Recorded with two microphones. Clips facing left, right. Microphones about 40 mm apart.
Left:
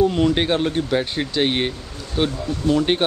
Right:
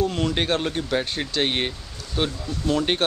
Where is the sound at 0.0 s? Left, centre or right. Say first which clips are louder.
Left 6 dB; centre.